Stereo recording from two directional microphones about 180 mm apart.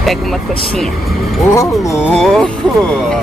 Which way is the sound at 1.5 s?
15° left (ahead or behind).